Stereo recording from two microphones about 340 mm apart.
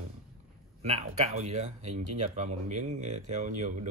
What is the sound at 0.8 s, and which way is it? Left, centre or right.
Speech, centre.